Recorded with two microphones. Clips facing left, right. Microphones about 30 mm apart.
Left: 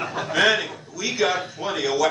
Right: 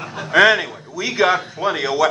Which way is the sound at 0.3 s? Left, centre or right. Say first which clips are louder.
Right 7 dB; right.